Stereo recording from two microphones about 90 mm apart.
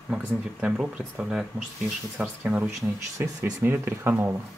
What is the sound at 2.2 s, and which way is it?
Speech, 15° right (ahead or behind).